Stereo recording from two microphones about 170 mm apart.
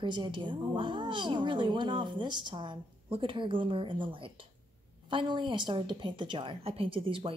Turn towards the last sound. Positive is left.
turn(degrees=-30)  # may be behind; listen again after turning